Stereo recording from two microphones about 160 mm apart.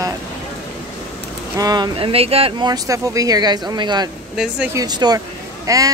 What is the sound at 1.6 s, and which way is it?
Speech, 25° right (ahead or behind).